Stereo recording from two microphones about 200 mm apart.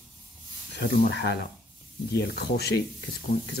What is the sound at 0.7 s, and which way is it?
Speech, 50° left (ahead or behind).